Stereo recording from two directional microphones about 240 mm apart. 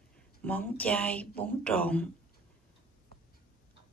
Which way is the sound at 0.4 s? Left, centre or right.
Centre.